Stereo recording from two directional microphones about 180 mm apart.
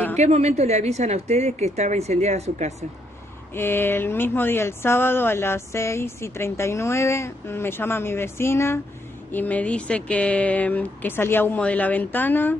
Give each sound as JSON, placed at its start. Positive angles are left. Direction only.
{"t": 0.2, "sound": "a woman's voice", "side_deg": -40}
{"t": 3.5, "sound": "speech", "side_deg": 10}